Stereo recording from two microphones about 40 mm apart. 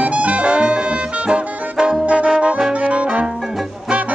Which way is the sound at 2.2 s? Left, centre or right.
Right.